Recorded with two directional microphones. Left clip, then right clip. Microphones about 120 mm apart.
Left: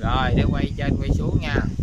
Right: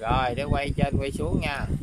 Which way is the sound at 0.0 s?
10° right (ahead or behind).